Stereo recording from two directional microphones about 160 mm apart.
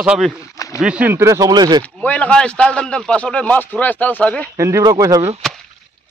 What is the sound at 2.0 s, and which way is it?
A man's voice, 10° left (ahead or behind).